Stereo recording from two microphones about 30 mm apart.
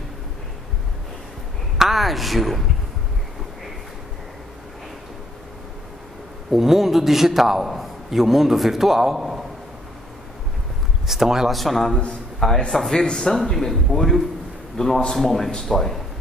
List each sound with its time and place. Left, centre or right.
1.8 s speech: centre
6.5 s a man's voice: centre
11.1 s speech: centre
11.5 s a man's voice: centre
12.1 s a man's voice: centre
13.3 s a man's voice: centre